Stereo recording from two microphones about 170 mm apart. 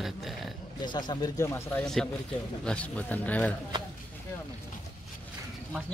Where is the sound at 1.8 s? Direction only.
5° left (ahead or behind).